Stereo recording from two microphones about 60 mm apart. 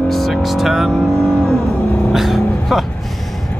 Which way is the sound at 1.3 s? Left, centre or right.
Left.